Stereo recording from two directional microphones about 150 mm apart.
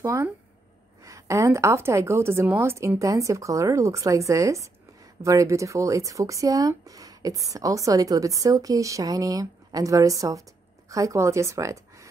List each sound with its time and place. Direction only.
0.0 s speech: 20° right (ahead or behind)